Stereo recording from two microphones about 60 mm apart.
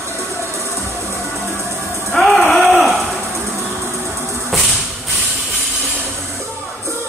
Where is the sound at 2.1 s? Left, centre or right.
Centre.